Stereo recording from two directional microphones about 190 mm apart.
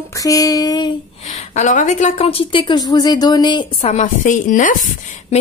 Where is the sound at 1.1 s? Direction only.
40° left (ahead or behind).